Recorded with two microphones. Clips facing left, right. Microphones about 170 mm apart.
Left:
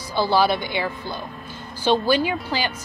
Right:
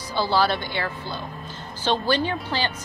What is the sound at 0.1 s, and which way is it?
Speech, 15° left (ahead or behind).